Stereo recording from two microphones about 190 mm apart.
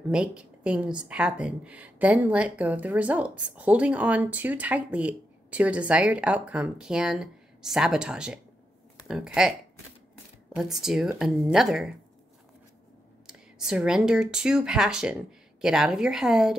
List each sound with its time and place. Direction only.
0.1 s speech: 5° right (ahead or behind)
13.3 s speech: 5° right (ahead or behind)